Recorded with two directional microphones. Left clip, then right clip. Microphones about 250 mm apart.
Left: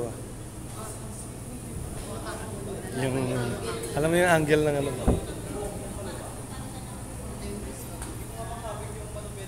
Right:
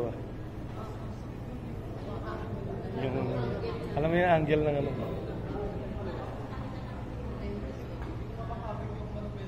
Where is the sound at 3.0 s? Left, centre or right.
Left.